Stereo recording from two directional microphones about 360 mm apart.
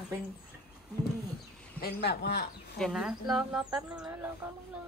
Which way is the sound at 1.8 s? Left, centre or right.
Left.